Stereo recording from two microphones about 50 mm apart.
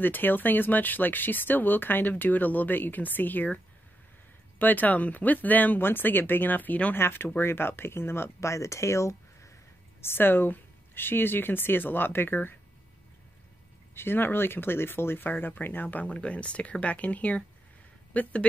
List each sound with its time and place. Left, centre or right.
0.0 s speech: left
4.6 s speech: left
5.8 s speech: left
7.0 s speech: left
8.4 s speech: left
10.0 s speech: left
13.9 s speech: left
16.2 s speech: left